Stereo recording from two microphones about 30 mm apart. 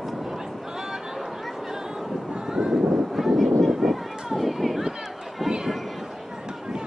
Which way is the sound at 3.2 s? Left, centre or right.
Centre.